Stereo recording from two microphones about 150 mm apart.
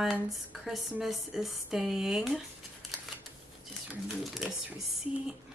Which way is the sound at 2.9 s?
Centre (ahead or behind).